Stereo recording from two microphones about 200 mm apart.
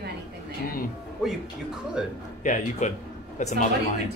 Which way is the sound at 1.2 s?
5° right (ahead or behind).